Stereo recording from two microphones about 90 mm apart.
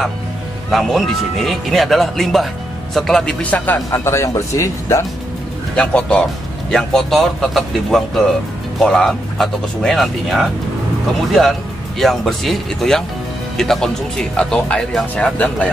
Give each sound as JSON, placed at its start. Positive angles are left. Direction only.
{"t": 0.7, "sound": "speech", "side_deg": 0}
{"t": 3.4, "sound": "speech", "side_deg": 20}
{"t": 5.8, "sound": "speech", "side_deg": 10}
{"t": 12.0, "sound": "speech", "side_deg": 0}